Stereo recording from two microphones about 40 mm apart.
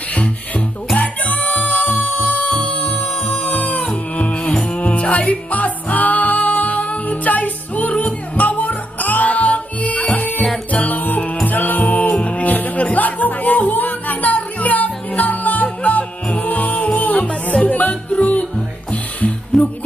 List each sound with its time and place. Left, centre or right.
0.9 s music: left
2.4 s music: left
2.8 s music: left